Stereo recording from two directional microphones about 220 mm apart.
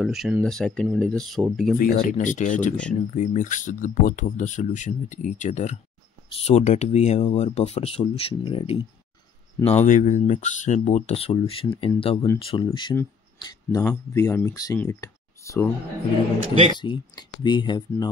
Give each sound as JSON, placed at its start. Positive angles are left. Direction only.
{"t": 0.0, "sound": "speech", "side_deg": 0}
{"t": 1.8, "sound": "speech", "side_deg": 35}
{"t": 16.8, "sound": "speech", "side_deg": 20}